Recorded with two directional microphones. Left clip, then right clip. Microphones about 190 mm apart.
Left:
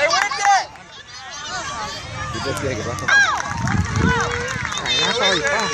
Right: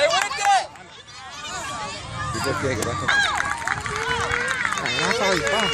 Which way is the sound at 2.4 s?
35° right (ahead or behind).